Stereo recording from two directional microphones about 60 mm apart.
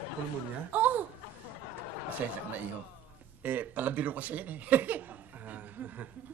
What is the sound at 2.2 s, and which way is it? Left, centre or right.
Speech, right.